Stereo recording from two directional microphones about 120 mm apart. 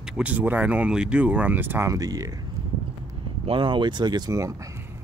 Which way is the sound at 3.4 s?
45° right (ahead or behind).